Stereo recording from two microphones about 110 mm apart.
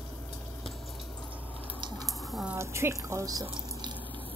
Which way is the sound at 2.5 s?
25° right (ahead or behind).